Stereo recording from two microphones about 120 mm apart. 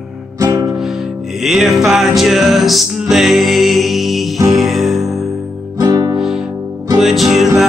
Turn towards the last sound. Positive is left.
turn(degrees=0)  # may be behind; listen again after turning